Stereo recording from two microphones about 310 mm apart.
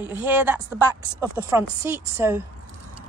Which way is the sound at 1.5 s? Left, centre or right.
Centre.